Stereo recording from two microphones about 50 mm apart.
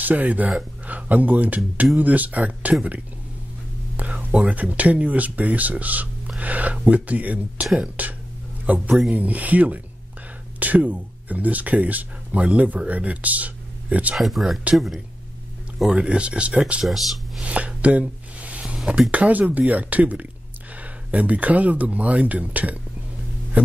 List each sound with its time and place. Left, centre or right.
0.0 s speech: right
3.9 s speech: right
14.1 s speech: centre
15.9 s speech: right
16.8 s speech: centre
17.4 s speech: right
18.4 s a sound: right
18.9 s speech: right